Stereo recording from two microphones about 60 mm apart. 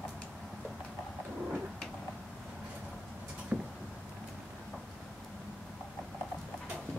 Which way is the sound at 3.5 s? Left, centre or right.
Right.